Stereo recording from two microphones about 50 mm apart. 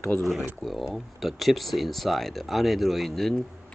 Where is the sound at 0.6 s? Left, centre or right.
Centre.